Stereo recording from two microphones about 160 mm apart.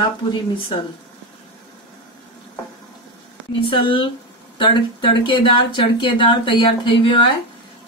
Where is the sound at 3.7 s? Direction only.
30° left (ahead or behind).